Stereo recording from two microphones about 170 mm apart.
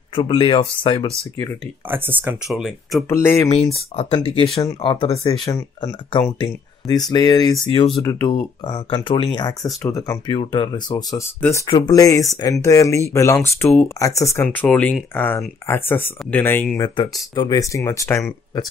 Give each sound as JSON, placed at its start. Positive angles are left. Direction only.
{"t": 0.1, "sound": "speech", "side_deg": 30}
{"t": 1.9, "sound": "speech", "side_deg": -10}
{"t": 3.1, "sound": "speech", "side_deg": 15}
{"t": 3.9, "sound": "speech", "side_deg": 35}
{"t": 5.4, "sound": "speech", "side_deg": 20}
{"t": 16.7, "sound": "speech", "side_deg": 25}